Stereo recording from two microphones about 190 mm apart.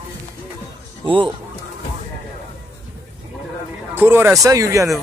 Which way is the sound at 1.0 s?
25° right (ahead or behind).